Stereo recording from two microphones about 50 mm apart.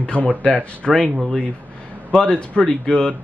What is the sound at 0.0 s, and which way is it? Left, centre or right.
Speech, left.